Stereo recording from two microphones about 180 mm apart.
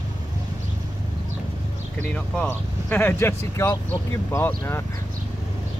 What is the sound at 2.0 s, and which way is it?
Speech, 10° left (ahead or behind).